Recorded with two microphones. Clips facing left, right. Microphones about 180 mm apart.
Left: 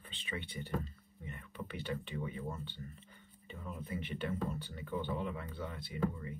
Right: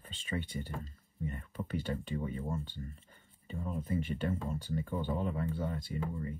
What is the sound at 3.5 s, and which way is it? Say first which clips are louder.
Speech: right 7 dB; 45° right (ahead or behind).